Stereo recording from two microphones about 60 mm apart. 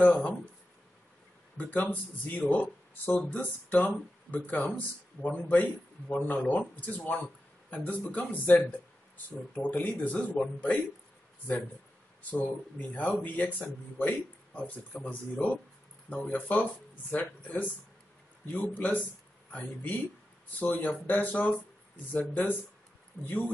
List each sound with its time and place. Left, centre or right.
0.0 s speech: left
1.6 s a man's voice: left
10.1 s speech: centre
12.3 s speech: left